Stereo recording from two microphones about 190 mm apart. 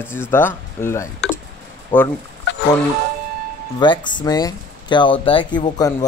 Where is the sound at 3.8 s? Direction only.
25° left (ahead or behind).